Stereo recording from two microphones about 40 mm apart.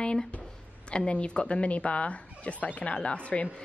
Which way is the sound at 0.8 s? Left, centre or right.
Left.